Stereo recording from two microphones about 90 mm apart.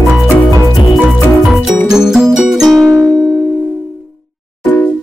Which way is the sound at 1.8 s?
5° right (ahead or behind).